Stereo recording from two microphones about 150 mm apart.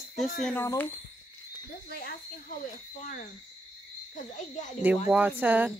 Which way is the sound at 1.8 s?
85° left.